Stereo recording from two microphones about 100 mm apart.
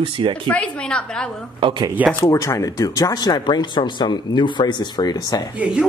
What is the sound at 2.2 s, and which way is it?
Speech, 30° left (ahead or behind).